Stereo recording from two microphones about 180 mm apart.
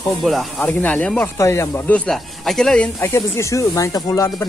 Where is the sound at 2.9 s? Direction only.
15° left (ahead or behind).